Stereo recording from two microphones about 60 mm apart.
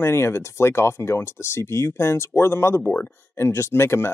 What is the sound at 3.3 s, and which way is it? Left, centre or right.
Speech, left.